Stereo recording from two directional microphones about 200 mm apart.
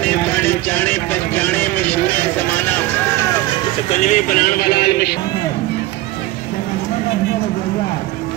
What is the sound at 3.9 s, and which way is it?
Speech, 35° left (ahead or behind).